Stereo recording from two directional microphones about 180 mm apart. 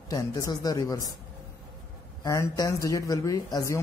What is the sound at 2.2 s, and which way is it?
Speech, 20° left (ahead or behind).